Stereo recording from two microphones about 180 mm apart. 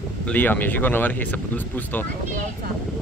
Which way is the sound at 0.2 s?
10° left (ahead or behind).